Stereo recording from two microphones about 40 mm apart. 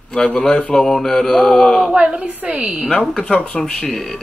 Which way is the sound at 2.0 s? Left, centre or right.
Right.